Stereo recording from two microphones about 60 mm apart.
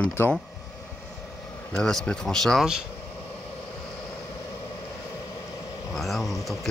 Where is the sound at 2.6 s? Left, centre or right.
Centre.